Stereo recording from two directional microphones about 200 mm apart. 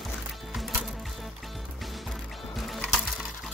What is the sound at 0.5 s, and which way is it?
Music, centre (ahead or behind).